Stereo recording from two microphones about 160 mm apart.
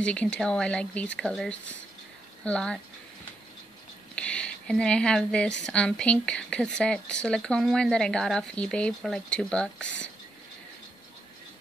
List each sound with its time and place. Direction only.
0.0 s speech: 5° left (ahead or behind)
4.1 s a sound: 5° left (ahead or behind)
5.7 s speech: 5° left (ahead or behind)